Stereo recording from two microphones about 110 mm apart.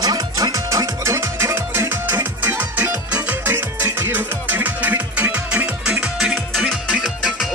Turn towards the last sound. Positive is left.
turn(degrees=0)  # may be behind; listen again after turning